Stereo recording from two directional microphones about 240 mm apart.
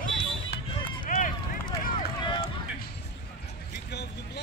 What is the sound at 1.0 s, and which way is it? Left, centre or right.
Run, left.